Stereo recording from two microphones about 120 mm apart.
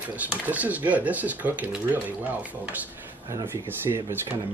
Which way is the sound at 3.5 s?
20° right (ahead or behind).